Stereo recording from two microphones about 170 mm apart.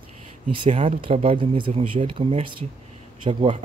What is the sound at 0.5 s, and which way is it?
Speech, 35° right (ahead or behind).